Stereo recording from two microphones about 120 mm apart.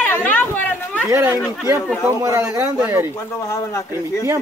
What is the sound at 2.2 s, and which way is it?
Speech, 25° right (ahead or behind).